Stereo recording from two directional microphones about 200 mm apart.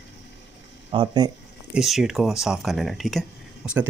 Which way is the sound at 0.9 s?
20° right (ahead or behind).